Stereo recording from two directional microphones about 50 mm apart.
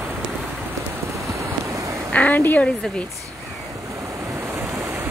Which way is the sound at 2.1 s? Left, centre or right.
Left.